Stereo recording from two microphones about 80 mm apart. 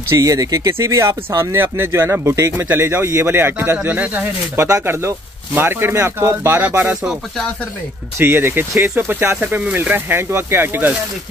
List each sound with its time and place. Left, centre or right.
0.1 s speech: right
4.6 s speech: right
7.0 s speech: centre
8.2 s speech: right